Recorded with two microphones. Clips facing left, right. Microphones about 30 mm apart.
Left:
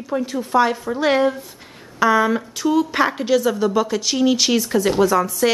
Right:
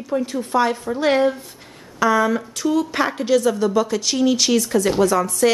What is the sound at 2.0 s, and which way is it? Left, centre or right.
A woman's voice, centre.